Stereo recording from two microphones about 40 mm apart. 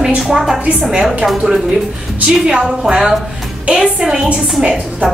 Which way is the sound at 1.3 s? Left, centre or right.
Centre.